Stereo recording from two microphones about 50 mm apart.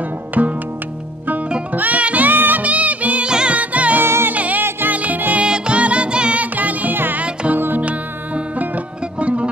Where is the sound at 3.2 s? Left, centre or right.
Centre.